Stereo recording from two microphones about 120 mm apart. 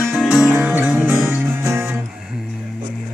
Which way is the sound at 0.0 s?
5° left (ahead or behind).